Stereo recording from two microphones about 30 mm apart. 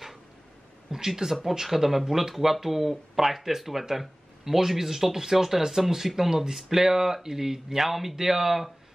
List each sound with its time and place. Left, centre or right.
0.9 s speech: centre